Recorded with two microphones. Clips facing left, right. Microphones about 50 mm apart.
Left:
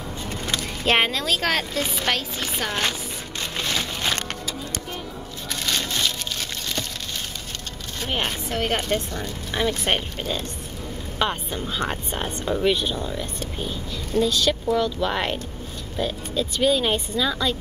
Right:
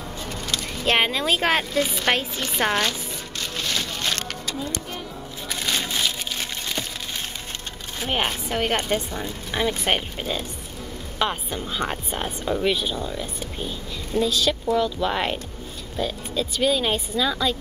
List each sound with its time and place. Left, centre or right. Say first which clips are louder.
0.8 s a woman's voice: left 1 dB; centre
1.1 s speech: right 2 dB; centre
2.1 s chopping: right 2 dB; centre
2.6 s speech: right 7 dB; right
3.5 s a sound: left 1 dB; centre
5.5 s crushing: even; centre
8.0 s a woman's voice: right 2 dB; centre